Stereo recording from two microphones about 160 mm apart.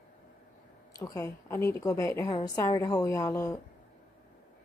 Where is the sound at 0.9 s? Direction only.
20° left (ahead or behind).